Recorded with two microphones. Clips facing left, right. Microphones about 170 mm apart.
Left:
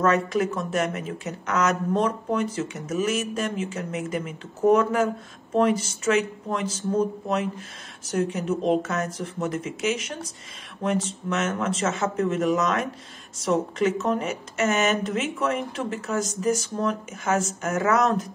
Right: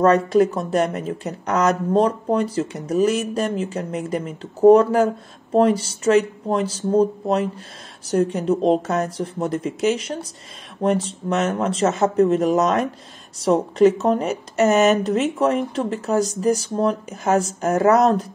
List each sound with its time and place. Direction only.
0.0 s speech: 35° right (ahead or behind)